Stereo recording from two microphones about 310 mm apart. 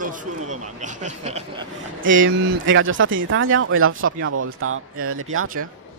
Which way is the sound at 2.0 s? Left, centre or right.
Right.